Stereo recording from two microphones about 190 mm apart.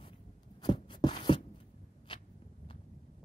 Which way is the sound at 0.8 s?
25° left (ahead or behind).